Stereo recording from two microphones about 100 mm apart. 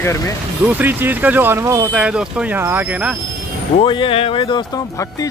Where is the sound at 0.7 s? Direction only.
20° right (ahead or behind).